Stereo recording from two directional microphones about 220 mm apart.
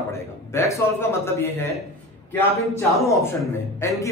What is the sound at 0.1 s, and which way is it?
Speech, 15° left (ahead or behind).